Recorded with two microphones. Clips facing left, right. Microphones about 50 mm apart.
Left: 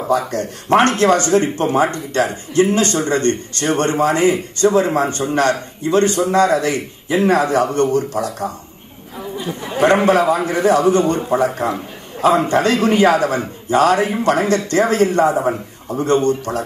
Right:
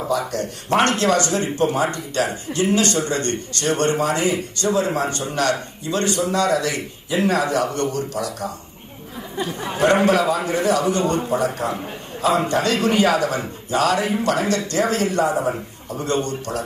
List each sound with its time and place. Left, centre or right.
0.3 s speech: left
9.8 s speech: left